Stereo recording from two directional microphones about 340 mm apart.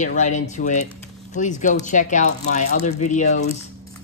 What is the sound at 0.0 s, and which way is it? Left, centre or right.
Speech, left.